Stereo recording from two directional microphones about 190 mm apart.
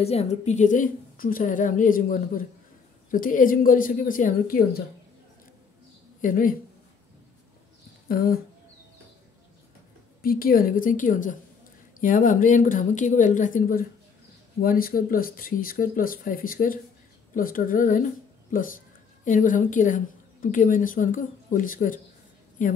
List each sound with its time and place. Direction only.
0.0 s a woman's voice: 35° left (ahead or behind); by 4.8 s 50° left (ahead or behind)
6.2 s a woman's voice: 45° left (ahead or behind)
8.1 s a woman's voice: 50° left (ahead or behind)
10.2 s a woman's voice: 50° left (ahead or behind)